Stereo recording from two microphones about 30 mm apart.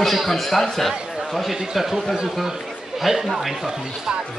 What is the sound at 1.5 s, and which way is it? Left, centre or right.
Speech, centre.